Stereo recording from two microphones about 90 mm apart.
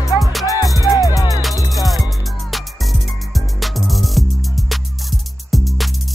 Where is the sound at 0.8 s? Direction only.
40° left (ahead or behind).